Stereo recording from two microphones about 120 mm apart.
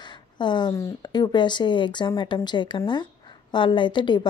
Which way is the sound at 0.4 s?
40° left (ahead or behind).